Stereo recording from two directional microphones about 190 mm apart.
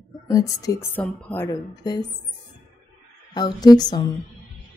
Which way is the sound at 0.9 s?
5° left (ahead or behind).